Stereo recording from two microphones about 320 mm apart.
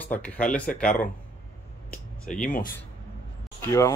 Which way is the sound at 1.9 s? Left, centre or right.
Centre.